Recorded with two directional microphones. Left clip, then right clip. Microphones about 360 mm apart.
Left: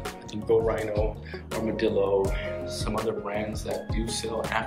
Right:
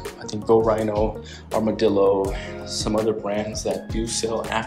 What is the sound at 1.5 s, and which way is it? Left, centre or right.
Speech, centre.